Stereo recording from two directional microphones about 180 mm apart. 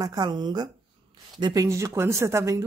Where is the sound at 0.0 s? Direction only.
20° right (ahead or behind).